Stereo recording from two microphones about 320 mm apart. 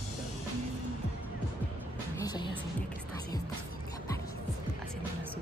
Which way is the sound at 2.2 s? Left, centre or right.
Centre.